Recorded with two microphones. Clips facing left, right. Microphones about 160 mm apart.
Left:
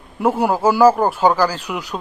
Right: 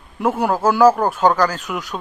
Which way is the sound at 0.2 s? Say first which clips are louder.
Left 1 dB; 10° left (ahead or behind).